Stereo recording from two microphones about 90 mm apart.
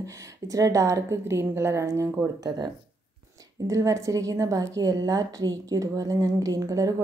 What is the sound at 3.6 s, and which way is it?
A woman's voice, 35° right (ahead or behind).